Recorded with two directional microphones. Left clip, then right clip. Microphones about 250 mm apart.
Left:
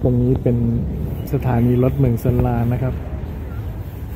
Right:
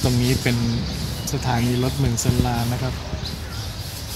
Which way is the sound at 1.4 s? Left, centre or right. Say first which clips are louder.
Left 5 dB; centre.